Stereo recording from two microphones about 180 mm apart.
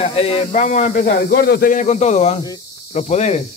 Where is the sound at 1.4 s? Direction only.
55° left (ahead or behind); by 3.4 s 40° left (ahead or behind).